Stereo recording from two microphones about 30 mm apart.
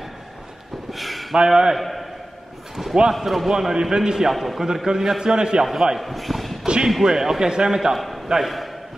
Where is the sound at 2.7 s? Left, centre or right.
Centre.